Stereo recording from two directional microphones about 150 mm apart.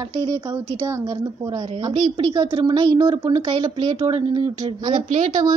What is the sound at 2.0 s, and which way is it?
A woman's voice, 30° right (ahead or behind).